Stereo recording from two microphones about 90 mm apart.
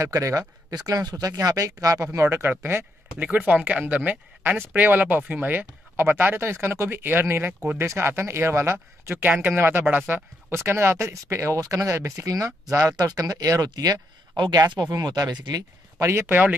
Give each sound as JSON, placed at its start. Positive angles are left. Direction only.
{"t": 0.0, "sound": "speech", "side_deg": -35}
{"t": 2.1, "sound": "speech", "side_deg": -25}
{"t": 14.3, "sound": "speech", "side_deg": -60}
{"t": 14.7, "sound": "speech", "side_deg": -50}
{"t": 16.0, "sound": "speech", "side_deg": -30}